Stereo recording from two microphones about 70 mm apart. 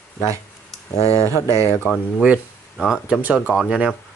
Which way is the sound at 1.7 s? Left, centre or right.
Left.